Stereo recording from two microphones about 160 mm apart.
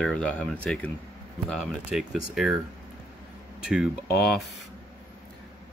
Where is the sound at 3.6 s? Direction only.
5° right (ahead or behind).